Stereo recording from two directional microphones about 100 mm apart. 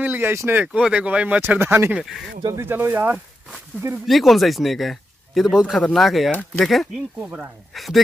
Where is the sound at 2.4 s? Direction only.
25° right (ahead or behind).